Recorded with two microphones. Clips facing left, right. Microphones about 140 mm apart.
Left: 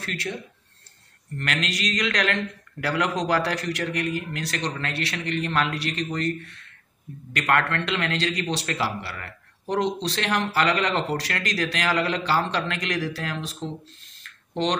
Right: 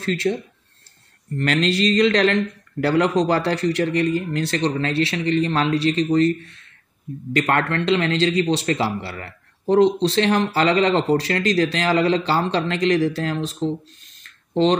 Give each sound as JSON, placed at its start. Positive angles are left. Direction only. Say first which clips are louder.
{"t": 0.0, "sound": "a man's voice", "louder": "right 10 dB", "side_deg": -30}
{"t": 1.4, "sound": "a man's voice", "louder": "right 9 dB", "side_deg": -30}
{"t": 7.3, "sound": "a man's voice", "louder": "right 3 dB", "side_deg": -25}
{"t": 14.2, "sound": "a sound", "louder": "right 8 dB", "side_deg": -25}